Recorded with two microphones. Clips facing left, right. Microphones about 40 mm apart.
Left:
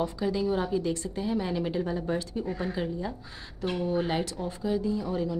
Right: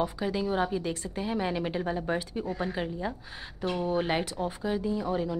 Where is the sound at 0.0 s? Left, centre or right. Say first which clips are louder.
Left 1 dB; right.